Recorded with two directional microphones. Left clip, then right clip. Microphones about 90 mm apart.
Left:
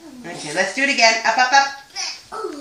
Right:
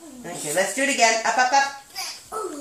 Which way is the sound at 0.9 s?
30° right (ahead or behind).